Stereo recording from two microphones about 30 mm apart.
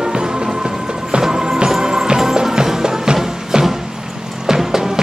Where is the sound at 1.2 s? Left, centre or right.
Centre.